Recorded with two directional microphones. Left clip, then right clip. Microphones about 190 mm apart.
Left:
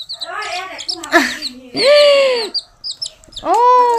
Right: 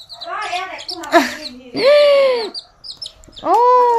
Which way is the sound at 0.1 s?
15° right (ahead or behind).